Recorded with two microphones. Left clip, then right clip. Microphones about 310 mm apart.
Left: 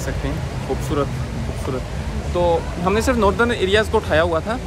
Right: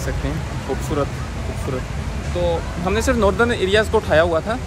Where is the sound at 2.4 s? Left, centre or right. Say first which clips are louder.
Left 3 dB; centre.